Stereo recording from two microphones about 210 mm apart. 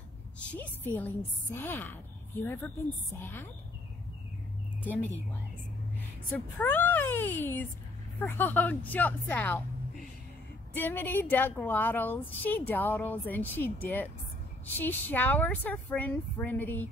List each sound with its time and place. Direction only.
0.4 s a woman's voice: 10° left (ahead or behind)
4.8 s a woman's voice: 5° left (ahead or behind)
6.6 s a woman's voice: 10° left (ahead or behind)
10.7 s a woman's voice: 10° left (ahead or behind)